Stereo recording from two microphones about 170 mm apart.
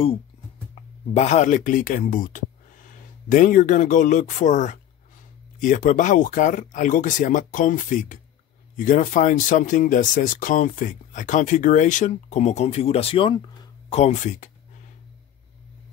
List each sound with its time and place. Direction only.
1.1 s speech: 45° left (ahead or behind)
13.9 s speech: 45° left (ahead or behind)